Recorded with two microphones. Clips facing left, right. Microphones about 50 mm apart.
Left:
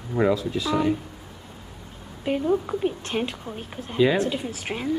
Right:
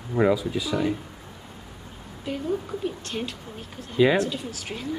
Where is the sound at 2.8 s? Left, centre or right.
Left.